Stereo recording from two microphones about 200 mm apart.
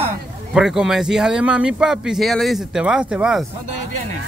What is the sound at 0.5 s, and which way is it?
Speech, 5° right (ahead or behind).